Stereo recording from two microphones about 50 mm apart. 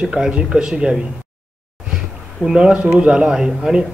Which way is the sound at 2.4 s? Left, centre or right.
Centre.